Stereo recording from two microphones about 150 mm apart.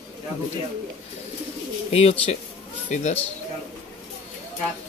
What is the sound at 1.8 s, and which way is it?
Speech, 45° left (ahead or behind).